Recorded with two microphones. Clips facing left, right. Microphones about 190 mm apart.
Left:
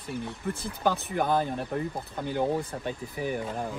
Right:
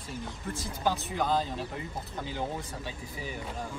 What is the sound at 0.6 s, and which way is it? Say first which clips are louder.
Speech: left 2 dB; 60° left (ahead or behind).